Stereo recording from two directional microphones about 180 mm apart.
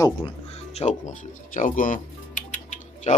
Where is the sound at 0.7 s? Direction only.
40° left (ahead or behind).